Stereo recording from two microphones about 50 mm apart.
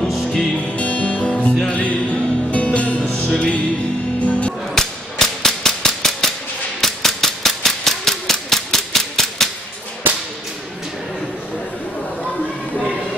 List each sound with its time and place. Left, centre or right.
0.0 s music: centre
0.6 s music: left
4.7 s cap gun: centre
6.8 s a sound: centre